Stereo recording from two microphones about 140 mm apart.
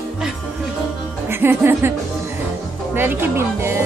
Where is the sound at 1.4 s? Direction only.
15° right (ahead or behind).